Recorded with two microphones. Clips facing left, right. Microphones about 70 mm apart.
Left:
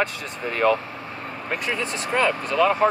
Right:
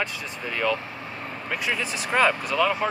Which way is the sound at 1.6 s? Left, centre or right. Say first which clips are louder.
Even; centre.